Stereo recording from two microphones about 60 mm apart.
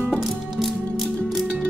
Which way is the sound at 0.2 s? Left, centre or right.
Centre.